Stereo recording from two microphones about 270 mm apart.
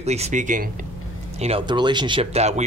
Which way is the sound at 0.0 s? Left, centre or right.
Right.